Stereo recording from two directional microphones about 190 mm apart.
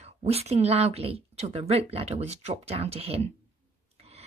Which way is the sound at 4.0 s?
35° right (ahead or behind).